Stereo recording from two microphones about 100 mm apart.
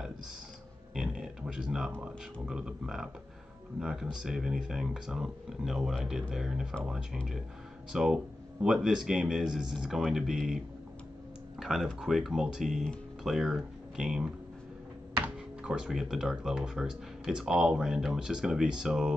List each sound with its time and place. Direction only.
0.9 s a sound: 10° right (ahead or behind)
1.9 s speech: 15° right (ahead or behind)
11.6 s speech: 5° right (ahead or behind)